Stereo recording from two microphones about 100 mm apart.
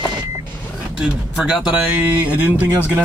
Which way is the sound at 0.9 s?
10° right (ahead or behind).